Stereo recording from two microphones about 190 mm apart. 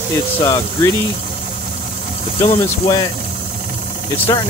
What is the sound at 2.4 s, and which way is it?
Speech, 25° left (ahead or behind).